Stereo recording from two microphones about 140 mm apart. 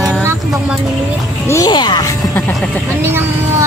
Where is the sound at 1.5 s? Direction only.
30° left (ahead or behind).